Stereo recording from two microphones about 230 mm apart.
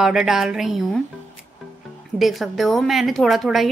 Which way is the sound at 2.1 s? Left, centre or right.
Centre.